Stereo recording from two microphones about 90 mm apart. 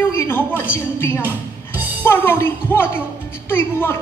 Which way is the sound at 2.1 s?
25° left (ahead or behind).